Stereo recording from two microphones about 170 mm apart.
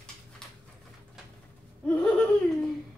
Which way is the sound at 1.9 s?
5° left (ahead or behind).